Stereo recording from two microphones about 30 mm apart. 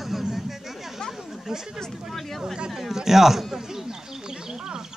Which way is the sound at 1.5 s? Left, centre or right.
Right.